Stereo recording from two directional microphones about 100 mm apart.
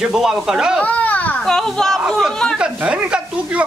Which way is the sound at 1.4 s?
5° left (ahead or behind).